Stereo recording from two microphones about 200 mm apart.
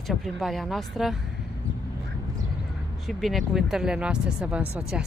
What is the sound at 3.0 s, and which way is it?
Speech, centre (ahead or behind).